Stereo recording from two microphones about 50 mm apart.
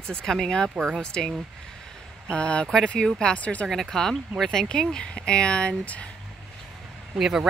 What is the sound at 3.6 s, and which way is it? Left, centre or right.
Speech, centre.